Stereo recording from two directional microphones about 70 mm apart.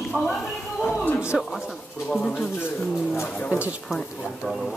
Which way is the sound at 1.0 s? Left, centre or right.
Left.